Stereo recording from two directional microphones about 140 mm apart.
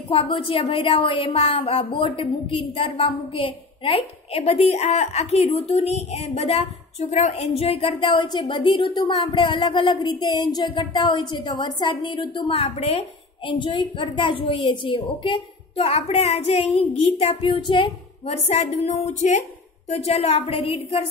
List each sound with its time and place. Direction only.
0.1 s a woman's voice: 40° left (ahead or behind)